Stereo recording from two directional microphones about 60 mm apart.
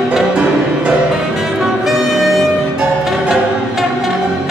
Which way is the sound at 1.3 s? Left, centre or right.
Centre.